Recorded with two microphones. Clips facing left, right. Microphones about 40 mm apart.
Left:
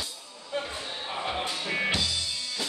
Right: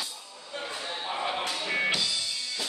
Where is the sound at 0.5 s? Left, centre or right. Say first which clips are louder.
Left 5 dB; left.